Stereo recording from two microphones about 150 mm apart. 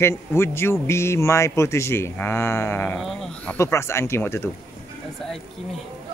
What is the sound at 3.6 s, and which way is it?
Speech, 15° left (ahead or behind).